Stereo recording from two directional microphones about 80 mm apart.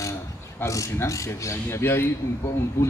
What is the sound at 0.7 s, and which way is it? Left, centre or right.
Speech, left.